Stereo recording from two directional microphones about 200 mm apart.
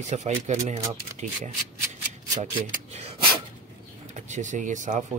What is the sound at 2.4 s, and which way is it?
Speech, 35° right (ahead or behind).